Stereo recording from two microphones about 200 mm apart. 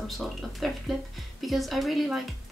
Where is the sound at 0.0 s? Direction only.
Centre (ahead or behind).